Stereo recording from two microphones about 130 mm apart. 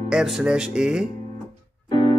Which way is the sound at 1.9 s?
35° left (ahead or behind).